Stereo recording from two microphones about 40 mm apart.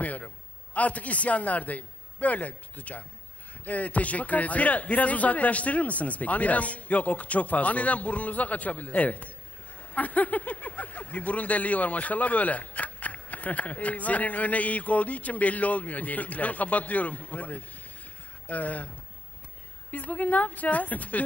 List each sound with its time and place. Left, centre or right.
0.0 s a man's voice: left
19.9 s speech: left